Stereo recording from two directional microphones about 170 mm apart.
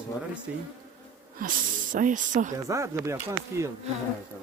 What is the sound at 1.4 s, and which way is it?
Speech, 50° right (ahead or behind).